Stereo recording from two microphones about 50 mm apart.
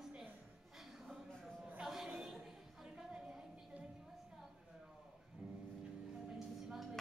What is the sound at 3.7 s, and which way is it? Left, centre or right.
Music, right.